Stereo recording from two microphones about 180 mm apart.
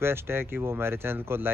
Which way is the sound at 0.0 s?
15° right (ahead or behind).